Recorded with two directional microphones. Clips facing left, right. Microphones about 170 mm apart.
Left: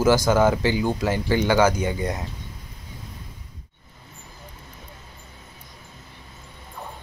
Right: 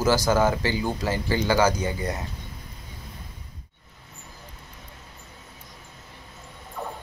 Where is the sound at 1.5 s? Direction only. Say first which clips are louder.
Left 2 dB; 10° right (ahead or behind).